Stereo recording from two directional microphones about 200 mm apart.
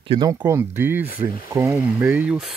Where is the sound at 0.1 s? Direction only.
20° right (ahead or behind).